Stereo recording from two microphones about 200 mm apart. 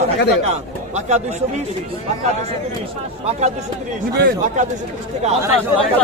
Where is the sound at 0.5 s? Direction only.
35° right (ahead or behind).